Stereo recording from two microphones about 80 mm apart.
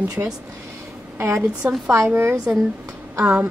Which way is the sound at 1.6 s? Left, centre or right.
Centre.